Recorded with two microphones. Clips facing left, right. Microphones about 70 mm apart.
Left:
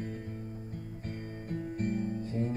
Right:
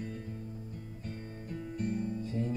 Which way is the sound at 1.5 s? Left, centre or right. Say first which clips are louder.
Left 2 dB; left.